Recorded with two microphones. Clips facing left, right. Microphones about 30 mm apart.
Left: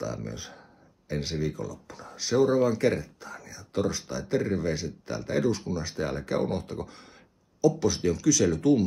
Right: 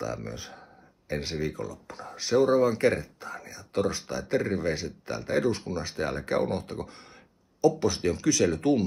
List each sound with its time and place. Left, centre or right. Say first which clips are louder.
0.0 s speech: even; right
2.1 s speech: right 1 dB; right
2.4 s speech: even; right
3.0 s speech: right 2 dB; right
5.4 s speech: left 1 dB; right
6.6 s speech: even; right